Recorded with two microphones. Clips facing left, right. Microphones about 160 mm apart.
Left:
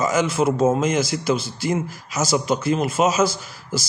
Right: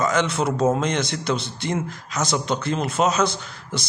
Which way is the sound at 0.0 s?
5° left (ahead or behind).